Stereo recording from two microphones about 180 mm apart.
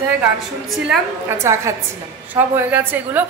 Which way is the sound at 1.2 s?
15° right (ahead or behind).